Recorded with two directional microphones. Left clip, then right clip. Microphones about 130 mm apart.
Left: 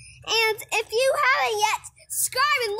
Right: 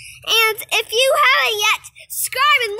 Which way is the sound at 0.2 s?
5° right (ahead or behind).